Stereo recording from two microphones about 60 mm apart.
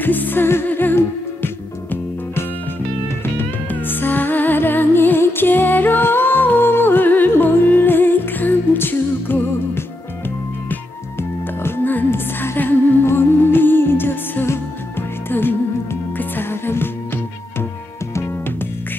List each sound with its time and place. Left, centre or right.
0.0 s music: left
18.1 s music: left